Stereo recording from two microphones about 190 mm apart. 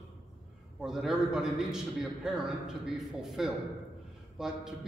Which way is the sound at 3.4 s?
Centre (ahead or behind).